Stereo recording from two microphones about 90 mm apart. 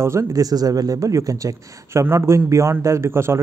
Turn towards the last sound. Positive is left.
turn(degrees=-30)  # may be behind; listen again after turning